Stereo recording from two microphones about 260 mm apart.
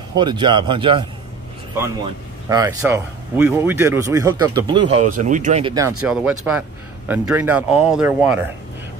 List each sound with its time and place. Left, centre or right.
0.1 s speech: centre
2.5 s speech: centre
6.0 s speech: centre